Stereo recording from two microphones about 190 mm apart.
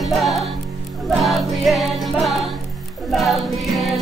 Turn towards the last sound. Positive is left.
turn(degrees=0)  # may be behind; listen again after turning